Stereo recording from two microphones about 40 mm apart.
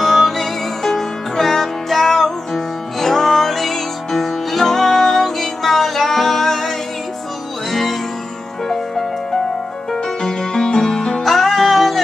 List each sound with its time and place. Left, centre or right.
0.0 s music: centre
10.2 s music: centre
11.2 s music: centre